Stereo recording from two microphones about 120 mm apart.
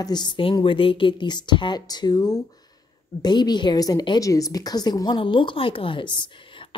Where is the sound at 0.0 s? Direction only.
35° left (ahead or behind).